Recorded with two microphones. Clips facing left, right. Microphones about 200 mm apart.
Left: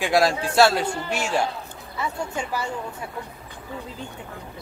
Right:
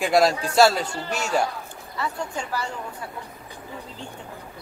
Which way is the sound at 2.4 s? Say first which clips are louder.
Left 1 dB; 10° left (ahead or behind).